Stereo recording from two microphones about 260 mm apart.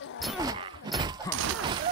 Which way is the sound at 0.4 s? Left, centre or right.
Centre.